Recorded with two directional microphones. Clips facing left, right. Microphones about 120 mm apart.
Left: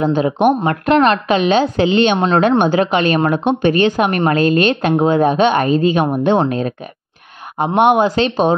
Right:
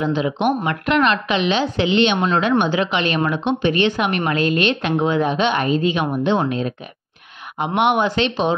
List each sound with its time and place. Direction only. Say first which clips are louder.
0.0 s a woman's voice: left 5 dB; 40° left (ahead or behind)
7.5 s a woman's voice: left 5 dB; 45° left (ahead or behind)